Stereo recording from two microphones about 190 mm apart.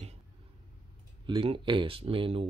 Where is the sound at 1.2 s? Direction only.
25° right (ahead or behind).